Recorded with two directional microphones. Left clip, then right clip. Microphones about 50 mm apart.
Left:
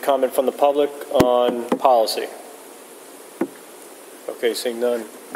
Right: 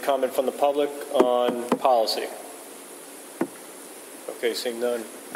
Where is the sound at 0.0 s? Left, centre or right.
Left.